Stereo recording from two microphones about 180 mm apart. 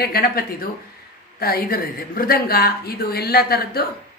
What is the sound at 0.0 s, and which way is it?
A woman's voice, 60° left (ahead or behind).